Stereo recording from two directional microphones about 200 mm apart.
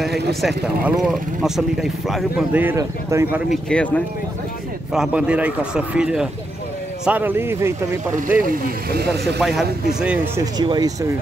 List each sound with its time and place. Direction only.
0.0 s speech: centre (ahead or behind)
3.6 s speech: 5° left (ahead or behind)
4.9 s speech: 5° right (ahead or behind)
10.4 s speech: 20° right (ahead or behind)